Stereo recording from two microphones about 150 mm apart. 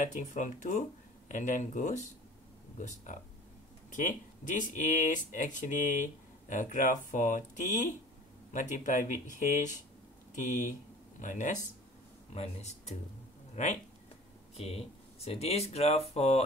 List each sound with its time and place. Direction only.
0.0 s speech: 55° left (ahead or behind)
3.9 s speech: 55° left (ahead or behind)
14.6 s speech: 40° left (ahead or behind)